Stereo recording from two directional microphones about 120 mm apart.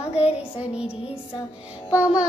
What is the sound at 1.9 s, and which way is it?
Music, 10° right (ahead or behind).